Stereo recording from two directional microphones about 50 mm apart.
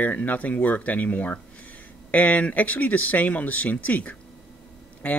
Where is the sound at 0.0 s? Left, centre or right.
Left.